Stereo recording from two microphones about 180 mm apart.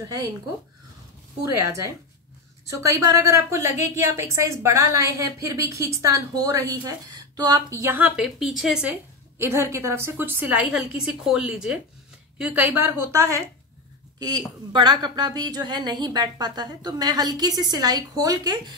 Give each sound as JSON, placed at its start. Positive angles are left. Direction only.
{"t": 0.0, "sound": "a woman's voice", "side_deg": -20}
{"t": 1.4, "sound": "a woman's voice", "side_deg": -15}
{"t": 9.4, "sound": "a woman's voice", "side_deg": -15}
{"t": 14.7, "sound": "a woman's voice", "side_deg": -25}